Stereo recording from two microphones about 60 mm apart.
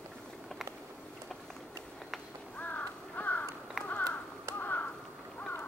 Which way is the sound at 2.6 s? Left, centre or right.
Left.